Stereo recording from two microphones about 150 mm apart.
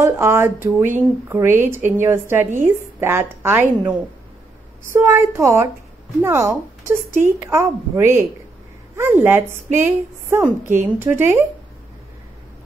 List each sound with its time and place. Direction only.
0.0 s a woman's voice: 15° right (ahead or behind)
4.9 s a woman's voice: 15° right (ahead or behind)